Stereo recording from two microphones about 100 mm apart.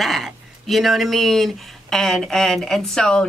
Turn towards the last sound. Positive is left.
turn(degrees=5)  # may be behind; listen again after turning